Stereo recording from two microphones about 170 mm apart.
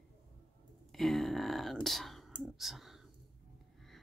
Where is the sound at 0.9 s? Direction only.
Centre (ahead or behind).